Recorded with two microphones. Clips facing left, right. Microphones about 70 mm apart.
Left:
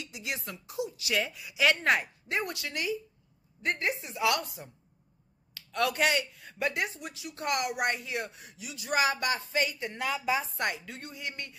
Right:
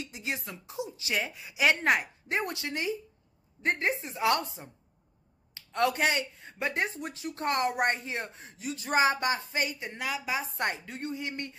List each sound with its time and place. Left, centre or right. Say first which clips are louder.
0.0 s speech: right 2 dB; right
10.0 s a woman's voice: left 2 dB; centre
10.4 s speech: right 1 dB; right